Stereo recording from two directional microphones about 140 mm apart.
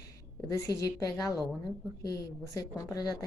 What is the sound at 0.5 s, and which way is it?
Speech, 25° left (ahead or behind).